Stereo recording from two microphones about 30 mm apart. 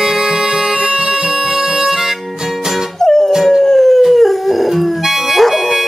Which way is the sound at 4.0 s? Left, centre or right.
Centre.